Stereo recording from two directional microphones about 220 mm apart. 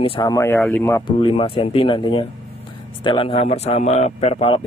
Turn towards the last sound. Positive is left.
turn(degrees=25)  # may be behind; listen again after turning